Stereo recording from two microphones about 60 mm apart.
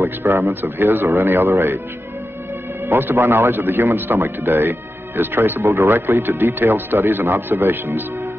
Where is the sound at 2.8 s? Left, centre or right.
Right.